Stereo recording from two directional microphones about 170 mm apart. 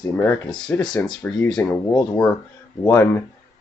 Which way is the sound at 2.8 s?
15° left (ahead or behind).